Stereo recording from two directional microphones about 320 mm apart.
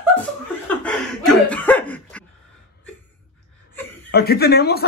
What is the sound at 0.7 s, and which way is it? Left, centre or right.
Laughter, centre.